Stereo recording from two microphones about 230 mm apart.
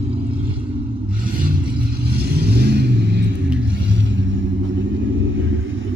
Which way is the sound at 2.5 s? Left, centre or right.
Right.